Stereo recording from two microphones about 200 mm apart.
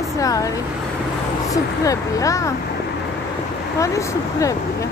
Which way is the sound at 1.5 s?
15° left (ahead or behind).